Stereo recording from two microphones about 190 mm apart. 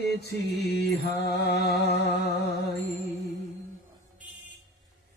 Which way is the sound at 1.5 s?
60° left (ahead or behind).